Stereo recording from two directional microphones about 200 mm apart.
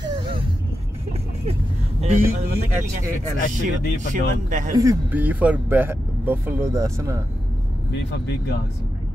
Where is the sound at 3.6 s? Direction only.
40° right (ahead or behind).